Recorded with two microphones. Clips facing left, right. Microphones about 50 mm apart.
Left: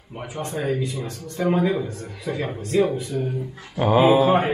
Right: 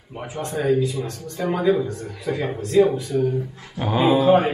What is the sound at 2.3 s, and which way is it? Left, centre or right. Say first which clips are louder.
Speech: right 2 dB; centre.